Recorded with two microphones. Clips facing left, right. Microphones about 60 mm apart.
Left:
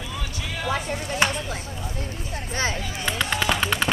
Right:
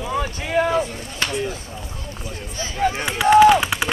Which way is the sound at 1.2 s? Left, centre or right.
Left.